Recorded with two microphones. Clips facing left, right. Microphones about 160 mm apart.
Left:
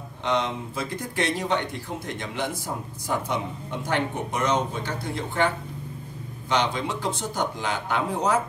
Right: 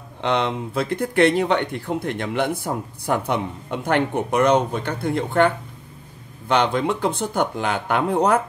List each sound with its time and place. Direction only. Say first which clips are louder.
0.2 s speech: right 4 dB; 65° right (ahead or behind)
6.5 s speech: right 6 dB; 55° right (ahead or behind)